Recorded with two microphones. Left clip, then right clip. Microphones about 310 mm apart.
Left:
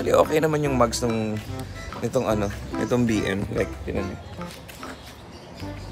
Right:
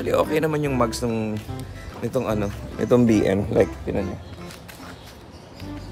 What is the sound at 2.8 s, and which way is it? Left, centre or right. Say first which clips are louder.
Speech: right 5 dB; centre.